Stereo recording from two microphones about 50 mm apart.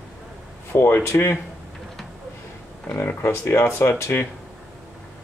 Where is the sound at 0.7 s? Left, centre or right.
Left.